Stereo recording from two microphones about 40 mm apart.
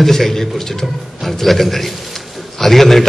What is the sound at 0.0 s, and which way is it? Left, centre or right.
A man's voice, centre.